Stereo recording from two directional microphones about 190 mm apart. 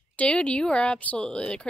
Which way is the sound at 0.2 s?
5° left (ahead or behind).